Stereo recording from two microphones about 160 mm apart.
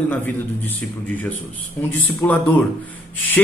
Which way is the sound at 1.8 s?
10° left (ahead or behind).